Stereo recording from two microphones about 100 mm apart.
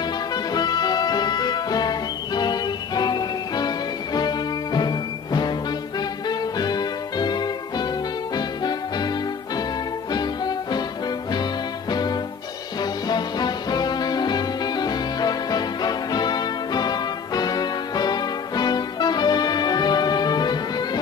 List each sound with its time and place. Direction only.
0.3 s music: 45° left (ahead or behind)
10.1 s music: 45° left (ahead or behind)
11.9 s music: 45° left (ahead or behind)